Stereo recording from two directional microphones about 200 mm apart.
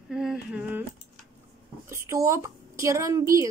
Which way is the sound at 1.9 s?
15° right (ahead or behind).